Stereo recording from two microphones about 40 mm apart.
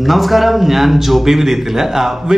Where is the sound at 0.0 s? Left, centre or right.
Centre.